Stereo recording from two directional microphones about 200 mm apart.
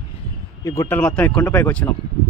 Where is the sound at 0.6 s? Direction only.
10° left (ahead or behind).